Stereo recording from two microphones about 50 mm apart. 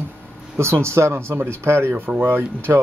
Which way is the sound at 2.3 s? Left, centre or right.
Right.